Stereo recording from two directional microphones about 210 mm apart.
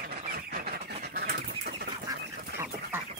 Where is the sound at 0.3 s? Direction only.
45° right (ahead or behind).